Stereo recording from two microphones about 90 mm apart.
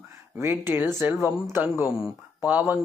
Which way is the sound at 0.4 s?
25° right (ahead or behind).